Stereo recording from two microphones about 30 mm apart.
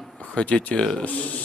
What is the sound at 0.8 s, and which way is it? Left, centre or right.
Speech, left.